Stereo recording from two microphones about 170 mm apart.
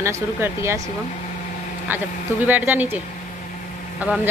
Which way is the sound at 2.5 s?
10° right (ahead or behind).